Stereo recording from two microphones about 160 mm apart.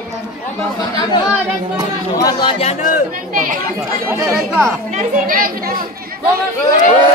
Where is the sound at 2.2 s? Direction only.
25° left (ahead or behind).